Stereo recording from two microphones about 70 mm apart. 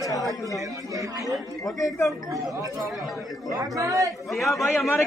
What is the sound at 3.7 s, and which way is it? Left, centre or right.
Speech, right.